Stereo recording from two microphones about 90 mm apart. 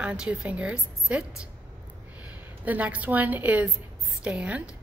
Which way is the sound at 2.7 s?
15° right (ahead or behind).